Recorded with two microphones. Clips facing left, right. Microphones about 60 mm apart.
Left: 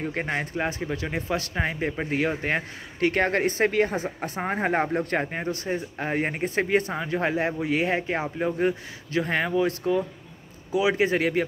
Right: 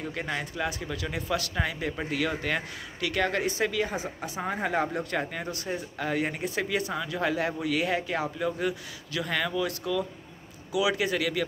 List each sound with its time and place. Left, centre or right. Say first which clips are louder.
0.0 s speech: left 4 dB; left